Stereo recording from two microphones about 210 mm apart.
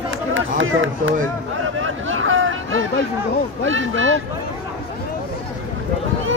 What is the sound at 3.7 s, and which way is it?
Speech, 65° right (ahead or behind).